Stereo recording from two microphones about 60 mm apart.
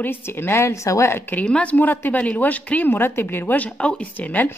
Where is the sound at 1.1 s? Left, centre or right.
Left.